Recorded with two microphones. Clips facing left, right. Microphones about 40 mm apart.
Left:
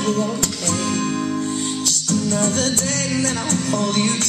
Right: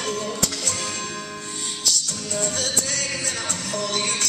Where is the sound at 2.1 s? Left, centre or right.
Left.